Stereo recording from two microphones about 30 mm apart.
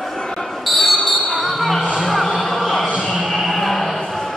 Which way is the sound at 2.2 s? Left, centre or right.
Centre.